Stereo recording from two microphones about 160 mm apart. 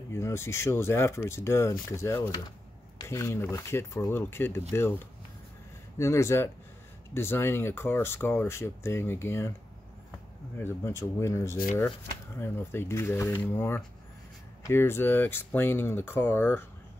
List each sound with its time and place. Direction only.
0.1 s speech: 15° left (ahead or behind)
10.6 s speech: 15° left (ahead or behind)